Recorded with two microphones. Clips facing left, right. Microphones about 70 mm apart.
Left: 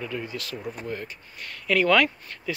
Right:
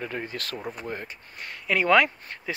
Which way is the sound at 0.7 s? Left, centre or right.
Right.